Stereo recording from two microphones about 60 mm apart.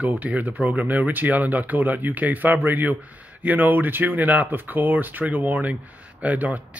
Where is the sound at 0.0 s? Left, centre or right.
Right.